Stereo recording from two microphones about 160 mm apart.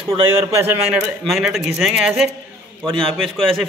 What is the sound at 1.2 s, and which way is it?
A man's voice, centre (ahead or behind).